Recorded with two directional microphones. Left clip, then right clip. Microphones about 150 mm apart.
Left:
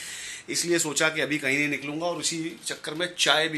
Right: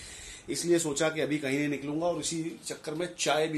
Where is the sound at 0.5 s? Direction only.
15° right (ahead or behind).